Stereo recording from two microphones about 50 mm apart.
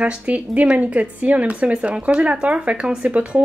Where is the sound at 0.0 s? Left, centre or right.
Right.